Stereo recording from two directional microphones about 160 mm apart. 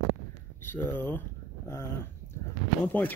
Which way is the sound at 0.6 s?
15° left (ahead or behind).